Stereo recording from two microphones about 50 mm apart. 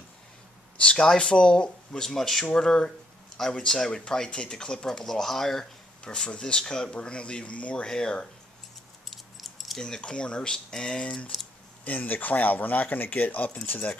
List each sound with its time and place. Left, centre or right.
0.7 s speech: centre
2.0 s speech: centre
6.0 s speech: centre
9.1 s keys jangling: centre
9.8 s speech: centre
11.8 s speech: left